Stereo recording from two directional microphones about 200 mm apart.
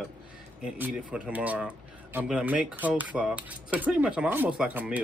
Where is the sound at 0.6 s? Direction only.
5° right (ahead or behind).